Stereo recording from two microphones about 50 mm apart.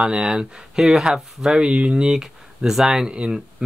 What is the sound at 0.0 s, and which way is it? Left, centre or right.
Speech, centre.